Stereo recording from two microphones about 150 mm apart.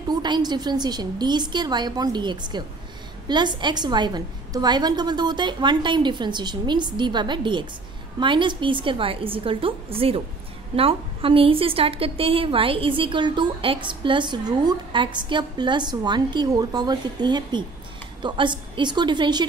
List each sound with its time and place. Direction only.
0.1 s a woman's voice: 30° right (ahead or behind)